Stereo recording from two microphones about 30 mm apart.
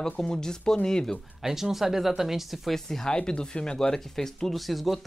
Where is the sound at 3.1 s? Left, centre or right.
Left.